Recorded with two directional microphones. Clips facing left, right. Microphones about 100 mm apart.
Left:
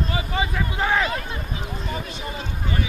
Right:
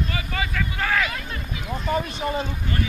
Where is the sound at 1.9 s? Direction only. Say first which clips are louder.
Right 10 dB; 45° right (ahead or behind).